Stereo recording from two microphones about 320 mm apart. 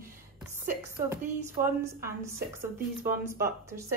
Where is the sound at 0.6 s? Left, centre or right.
Centre.